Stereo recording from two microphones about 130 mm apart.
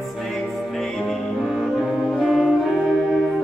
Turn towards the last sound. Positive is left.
turn(degrees=0)  # may be behind; listen again after turning